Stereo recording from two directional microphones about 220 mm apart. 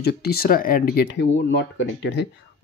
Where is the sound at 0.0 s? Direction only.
45° left (ahead or behind).